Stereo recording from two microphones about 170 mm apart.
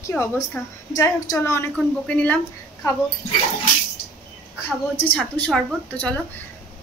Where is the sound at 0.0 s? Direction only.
10° left (ahead or behind).